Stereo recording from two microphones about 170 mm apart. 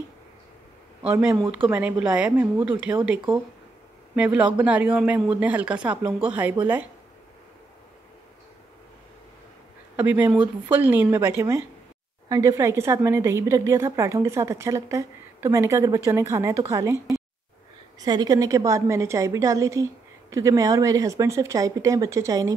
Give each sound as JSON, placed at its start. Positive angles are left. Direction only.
{"t": 1.0, "sound": "a woman's voice", "side_deg": -15}
{"t": 9.9, "sound": "a woman's voice", "side_deg": -10}